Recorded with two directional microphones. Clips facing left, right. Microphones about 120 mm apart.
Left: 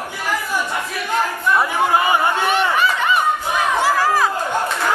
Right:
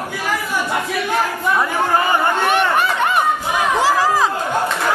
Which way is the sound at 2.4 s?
55° right (ahead or behind).